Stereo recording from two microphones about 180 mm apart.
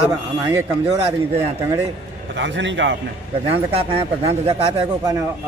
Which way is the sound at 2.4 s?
90° right.